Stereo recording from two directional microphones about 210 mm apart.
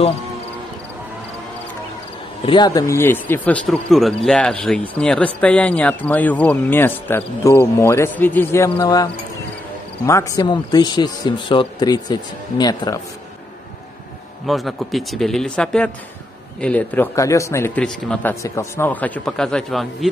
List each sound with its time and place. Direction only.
2.4 s speech: 20° left (ahead or behind)
8.7 s a man's voice: 20° left (ahead or behind)
14.4 s speech: centre (ahead or behind)